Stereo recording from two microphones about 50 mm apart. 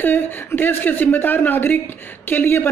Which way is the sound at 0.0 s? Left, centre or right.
Left.